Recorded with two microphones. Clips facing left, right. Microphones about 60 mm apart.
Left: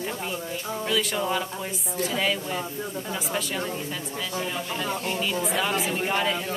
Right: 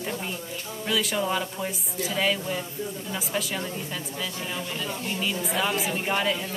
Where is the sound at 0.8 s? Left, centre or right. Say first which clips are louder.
Right 1 dB; centre.